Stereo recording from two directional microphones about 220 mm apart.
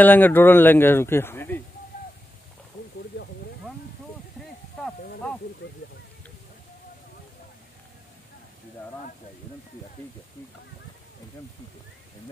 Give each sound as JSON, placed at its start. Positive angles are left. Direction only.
{"t": 0.0, "sound": "a man's voice", "side_deg": 10}
{"t": 3.1, "sound": "snake", "side_deg": 50}
{"t": 5.6, "sound": "a sound", "side_deg": 45}